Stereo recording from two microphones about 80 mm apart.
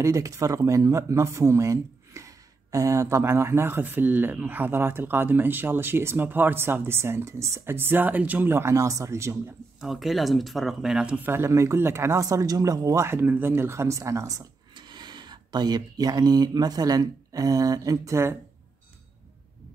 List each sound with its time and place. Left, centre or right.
0.0 s speech: right
9.8 s speech: centre
11.1 s speech: right
14.8 s speech: right